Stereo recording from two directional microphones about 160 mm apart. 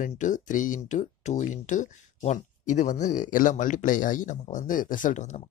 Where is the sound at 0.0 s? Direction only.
50° left (ahead or behind).